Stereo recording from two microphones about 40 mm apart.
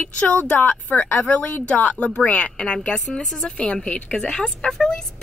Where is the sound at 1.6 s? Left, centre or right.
Left.